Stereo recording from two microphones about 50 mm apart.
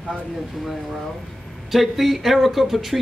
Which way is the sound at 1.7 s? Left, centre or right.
Centre.